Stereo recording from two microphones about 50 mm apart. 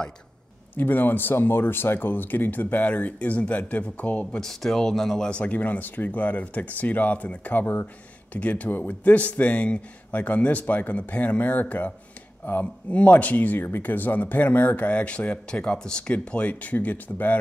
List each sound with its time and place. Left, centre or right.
0.7 s speech: left
4.4 s speech: centre
5.3 s speech: left
7.6 s speech: left
8.3 s speech: left